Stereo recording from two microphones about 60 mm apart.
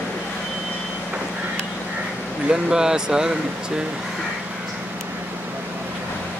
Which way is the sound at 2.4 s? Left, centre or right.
Centre.